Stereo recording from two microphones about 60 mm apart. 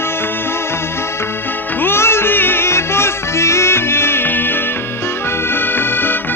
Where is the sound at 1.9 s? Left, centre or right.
Left.